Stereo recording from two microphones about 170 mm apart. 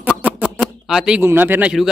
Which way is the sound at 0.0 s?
10° right (ahead or behind).